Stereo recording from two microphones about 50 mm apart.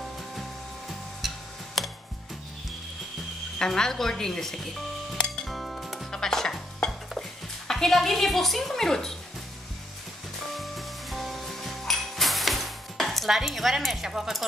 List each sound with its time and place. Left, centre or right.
1.8 s music: centre
3.5 s a woman's voice: centre
5.1 s music: centre
5.5 s music: centre
6.1 s dishes: centre
10.5 s music: centre
14.0 s speech: centre